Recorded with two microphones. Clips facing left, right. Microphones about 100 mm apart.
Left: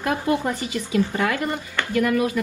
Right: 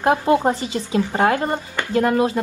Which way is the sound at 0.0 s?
25° right (ahead or behind).